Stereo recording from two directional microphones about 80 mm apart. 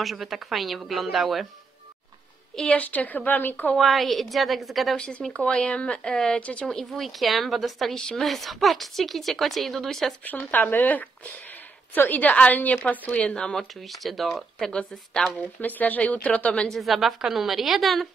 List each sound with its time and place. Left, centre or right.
0.0 s speech: centre
2.7 s speech: centre
3.7 s speech: centre
4.9 s speech: centre
10.5 s a woman's voice: left
15.6 s speech: left
16.7 s speech: centre